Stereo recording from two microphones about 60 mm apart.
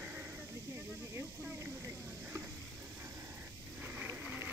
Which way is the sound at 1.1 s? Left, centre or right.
Right.